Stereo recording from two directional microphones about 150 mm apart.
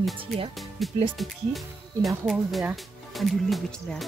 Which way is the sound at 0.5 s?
Centre (ahead or behind).